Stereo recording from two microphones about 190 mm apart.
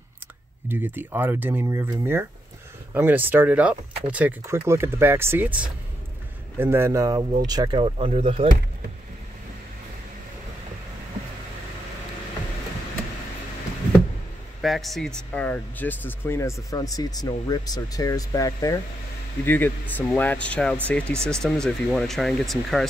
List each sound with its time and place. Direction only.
0.7 s speech: 10° right (ahead or behind); by 8.5 s 30° right (ahead or behind)
14.6 s speech: centre (ahead or behind)